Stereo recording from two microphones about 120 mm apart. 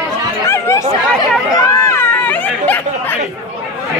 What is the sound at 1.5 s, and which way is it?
Run, 30° left (ahead or behind).